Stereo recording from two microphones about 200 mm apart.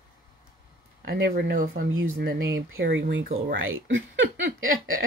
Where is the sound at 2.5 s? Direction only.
70° right (ahead or behind).